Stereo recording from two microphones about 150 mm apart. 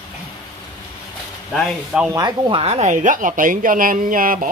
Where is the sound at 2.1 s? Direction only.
25° right (ahead or behind); by 2.9 s 45° right (ahead or behind).